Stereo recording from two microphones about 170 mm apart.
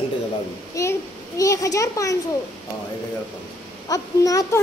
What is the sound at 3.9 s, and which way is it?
Speech, 20° left (ahead or behind).